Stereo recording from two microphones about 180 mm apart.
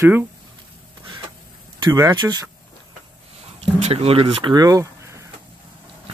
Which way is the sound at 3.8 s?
35° right (ahead or behind).